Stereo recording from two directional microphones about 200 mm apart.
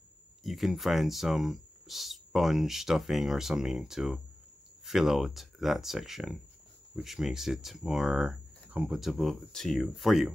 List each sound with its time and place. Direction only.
0.4 s speech: centre (ahead or behind)